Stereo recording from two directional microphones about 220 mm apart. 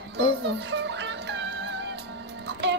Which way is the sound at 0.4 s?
50° right (ahead or behind).